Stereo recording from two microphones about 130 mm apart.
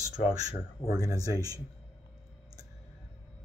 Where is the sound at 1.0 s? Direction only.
25° right (ahead or behind).